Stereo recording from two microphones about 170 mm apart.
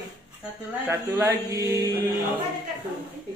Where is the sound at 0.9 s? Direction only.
15° right (ahead or behind).